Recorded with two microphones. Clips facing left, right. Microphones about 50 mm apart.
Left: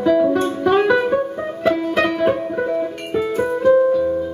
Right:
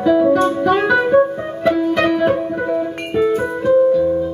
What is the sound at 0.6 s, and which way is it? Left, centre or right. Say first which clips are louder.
Music: right 1 dB; centre.